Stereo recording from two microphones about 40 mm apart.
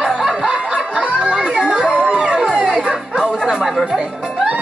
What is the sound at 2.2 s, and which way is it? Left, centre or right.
Music, right.